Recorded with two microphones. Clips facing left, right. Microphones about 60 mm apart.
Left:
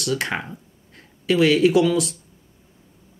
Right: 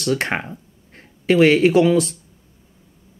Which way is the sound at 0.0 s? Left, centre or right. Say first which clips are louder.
Right 3 dB; right.